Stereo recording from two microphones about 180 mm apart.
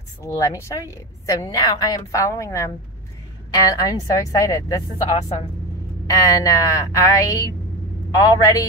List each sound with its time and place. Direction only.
0.2 s a woman's voice: 15° left (ahead or behind)
6.0 s a woman's voice: 20° left (ahead or behind)